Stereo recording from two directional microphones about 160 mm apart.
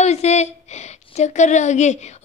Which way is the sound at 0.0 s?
45° left (ahead or behind).